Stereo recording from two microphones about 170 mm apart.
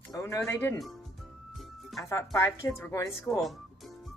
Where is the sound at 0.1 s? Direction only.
20° left (ahead or behind).